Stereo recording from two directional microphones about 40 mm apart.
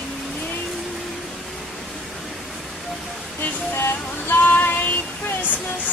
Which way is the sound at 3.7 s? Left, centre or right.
Left.